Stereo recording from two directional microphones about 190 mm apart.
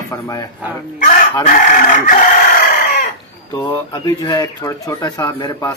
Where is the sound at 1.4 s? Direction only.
45° left (ahead or behind).